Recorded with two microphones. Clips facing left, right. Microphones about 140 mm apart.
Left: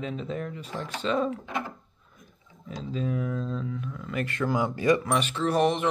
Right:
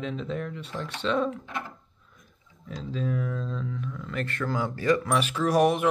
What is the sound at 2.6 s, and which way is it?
Speech, centre (ahead or behind).